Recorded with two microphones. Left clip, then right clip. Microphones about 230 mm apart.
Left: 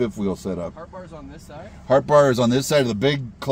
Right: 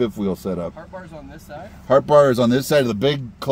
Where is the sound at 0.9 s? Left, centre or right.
Right.